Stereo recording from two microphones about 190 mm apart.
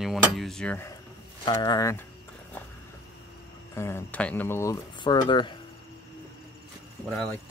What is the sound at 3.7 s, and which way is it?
Speech, 15° left (ahead or behind).